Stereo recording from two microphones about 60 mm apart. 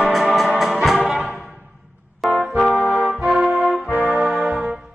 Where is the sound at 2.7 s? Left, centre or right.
Right.